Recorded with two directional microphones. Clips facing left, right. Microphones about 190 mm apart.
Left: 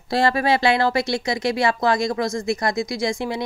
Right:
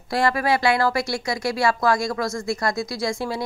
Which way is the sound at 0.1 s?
25° left (ahead or behind).